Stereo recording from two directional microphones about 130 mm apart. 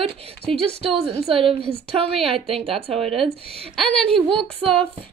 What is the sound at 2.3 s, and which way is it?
Speech, 45° right (ahead or behind).